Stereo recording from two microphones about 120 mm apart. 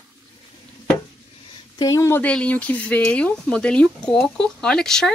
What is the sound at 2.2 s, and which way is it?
Speech, 10° left (ahead or behind).